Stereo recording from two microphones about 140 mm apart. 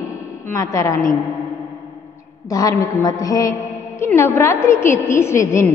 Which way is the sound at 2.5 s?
25° left (ahead or behind).